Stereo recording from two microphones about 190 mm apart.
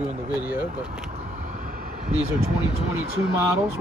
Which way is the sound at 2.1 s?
35° right (ahead or behind).